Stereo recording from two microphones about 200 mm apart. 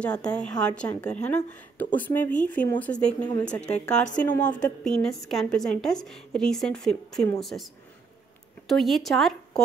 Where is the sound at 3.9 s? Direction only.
40° left (ahead or behind).